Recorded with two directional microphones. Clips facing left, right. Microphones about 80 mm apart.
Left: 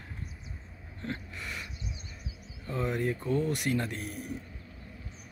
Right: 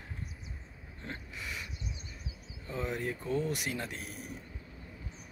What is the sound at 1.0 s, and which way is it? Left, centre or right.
Gasp, centre.